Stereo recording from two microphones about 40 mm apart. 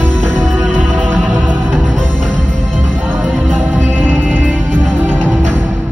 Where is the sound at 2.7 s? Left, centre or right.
Centre.